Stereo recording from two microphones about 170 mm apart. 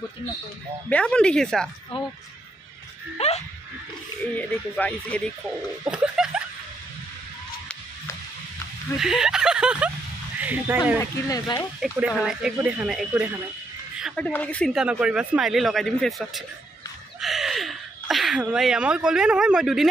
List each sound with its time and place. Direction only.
0.8 s speech: 5° left (ahead or behind)
1.9 s speech: 30° left (ahead or behind)
3.2 s speech: 40° left (ahead or behind)
4.4 s speech: 10° left (ahead or behind)
5.9 s a sound: 5° right (ahead or behind)
9.0 s speech: 5° right (ahead or behind)
11.0 s speech: 20° left (ahead or behind)
11.8 s speech: 5° right (ahead or behind)
17.2 s a sound: centre (ahead or behind)